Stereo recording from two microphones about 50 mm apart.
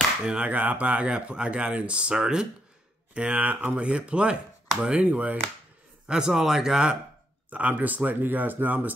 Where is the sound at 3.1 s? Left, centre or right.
Right.